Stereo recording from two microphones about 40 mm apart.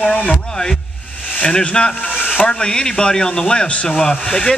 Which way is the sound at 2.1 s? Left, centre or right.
Left.